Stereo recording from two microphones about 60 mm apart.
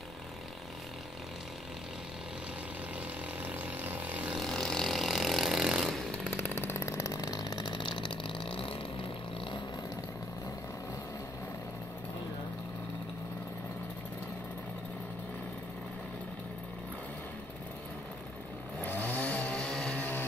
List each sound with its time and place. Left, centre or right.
3.4 s vehicle: right
4.4 s vehicle: centre
6.1 s chainsaw: centre
6.4 s chainsaw: left
6.9 s chainsaw: left
18.8 s chainsaw: left
19.5 s vehicle: centre
20.0 s vehicle: left